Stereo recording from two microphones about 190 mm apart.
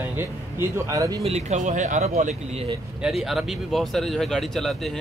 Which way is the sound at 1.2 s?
35° right (ahead or behind).